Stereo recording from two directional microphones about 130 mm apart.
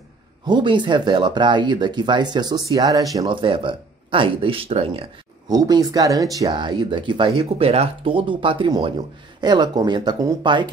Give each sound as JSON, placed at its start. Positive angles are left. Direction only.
{"t": 0.5, "sound": "speech", "side_deg": -35}
{"t": 3.3, "sound": "speech", "side_deg": -40}
{"t": 5.5, "sound": "speech", "side_deg": -30}